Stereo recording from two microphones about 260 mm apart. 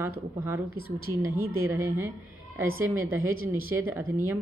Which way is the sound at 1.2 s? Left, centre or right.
Centre.